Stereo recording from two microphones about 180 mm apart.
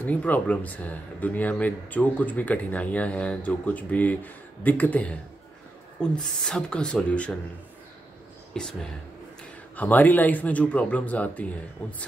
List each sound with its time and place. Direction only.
0.0 s speech: 10° left (ahead or behind)
8.5 s speech: 5° left (ahead or behind)
9.8 s speech: 10° left (ahead or behind)